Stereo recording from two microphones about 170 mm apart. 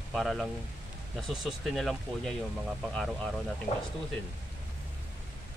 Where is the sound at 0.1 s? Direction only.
Centre (ahead or behind).